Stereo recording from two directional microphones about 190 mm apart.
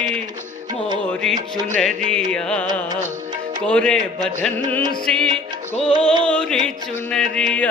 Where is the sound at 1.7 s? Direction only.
Centre (ahead or behind).